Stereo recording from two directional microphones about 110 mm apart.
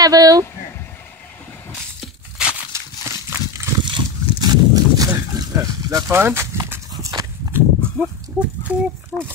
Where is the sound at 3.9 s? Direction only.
40° right (ahead or behind); by 6.8 s 25° right (ahead or behind).